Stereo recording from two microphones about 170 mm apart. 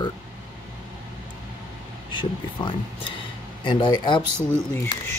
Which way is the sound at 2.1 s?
25° left (ahead or behind).